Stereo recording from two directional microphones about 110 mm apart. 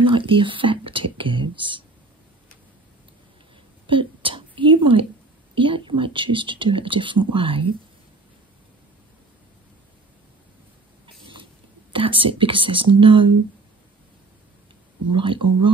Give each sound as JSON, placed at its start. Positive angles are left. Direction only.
{"t": 0.0, "sound": "speech", "side_deg": -50}
{"t": 3.8, "sound": "whispering", "side_deg": -50}
{"t": 5.5, "sound": "speech", "side_deg": -50}
{"t": 11.9, "sound": "speech", "side_deg": -55}
{"t": 15.0, "sound": "speech", "side_deg": -50}